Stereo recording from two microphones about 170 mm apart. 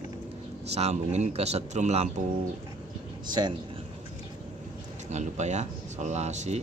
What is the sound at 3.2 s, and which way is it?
Speech, 25° right (ahead or behind).